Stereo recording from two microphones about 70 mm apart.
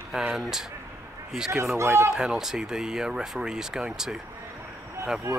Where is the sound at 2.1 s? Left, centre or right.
Centre.